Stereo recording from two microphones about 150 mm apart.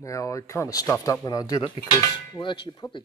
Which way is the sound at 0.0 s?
20° left (ahead or behind).